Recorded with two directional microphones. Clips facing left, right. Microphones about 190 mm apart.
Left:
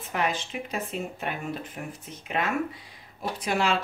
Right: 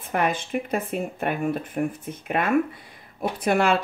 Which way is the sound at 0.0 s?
50° right (ahead or behind).